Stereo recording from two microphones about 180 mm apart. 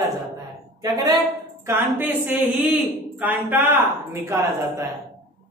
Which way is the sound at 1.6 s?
10° right (ahead or behind).